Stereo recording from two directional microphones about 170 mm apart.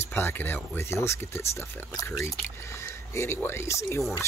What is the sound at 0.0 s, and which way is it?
Speech, 15° left (ahead or behind).